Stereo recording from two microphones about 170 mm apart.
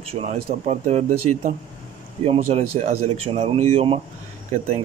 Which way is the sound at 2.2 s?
35° right (ahead or behind).